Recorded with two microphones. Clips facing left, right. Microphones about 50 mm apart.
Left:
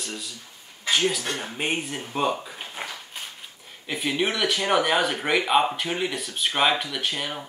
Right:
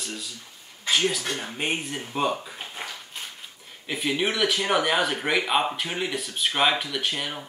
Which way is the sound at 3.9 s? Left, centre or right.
Centre.